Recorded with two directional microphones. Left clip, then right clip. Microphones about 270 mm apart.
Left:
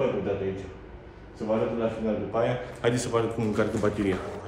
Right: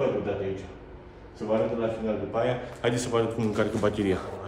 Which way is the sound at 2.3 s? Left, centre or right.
Centre.